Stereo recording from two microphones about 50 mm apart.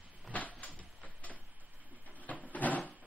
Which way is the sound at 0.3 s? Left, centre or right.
Left.